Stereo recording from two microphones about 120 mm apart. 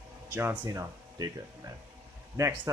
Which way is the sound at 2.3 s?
25° right (ahead or behind).